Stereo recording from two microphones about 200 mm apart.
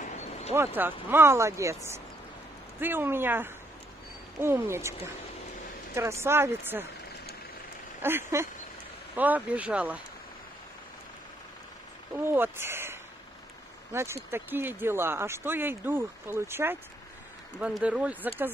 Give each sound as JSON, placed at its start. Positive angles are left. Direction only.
{"t": 0.0, "sound": "a sound", "side_deg": 35}
{"t": 0.7, "sound": "speech", "side_deg": -10}
{"t": 5.9, "sound": "speech", "side_deg": -15}
{"t": 8.0, "sound": "speech", "side_deg": -10}
{"t": 12.3, "sound": "speech", "side_deg": -10}